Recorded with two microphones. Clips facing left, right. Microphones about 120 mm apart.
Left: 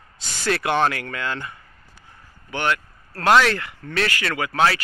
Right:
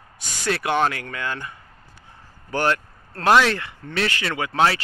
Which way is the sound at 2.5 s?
35° right (ahead or behind).